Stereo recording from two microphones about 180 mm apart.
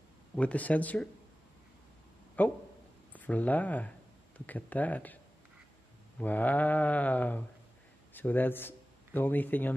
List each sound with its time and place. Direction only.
0.4 s speech: 10° left (ahead or behind)
2.4 s a man's voice: 10° left (ahead or behind)